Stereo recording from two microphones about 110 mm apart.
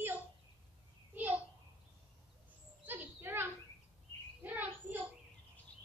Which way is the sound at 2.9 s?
20° right (ahead or behind).